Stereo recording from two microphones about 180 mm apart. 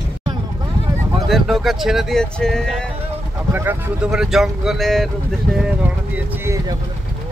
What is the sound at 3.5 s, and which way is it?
Speech, 10° right (ahead or behind).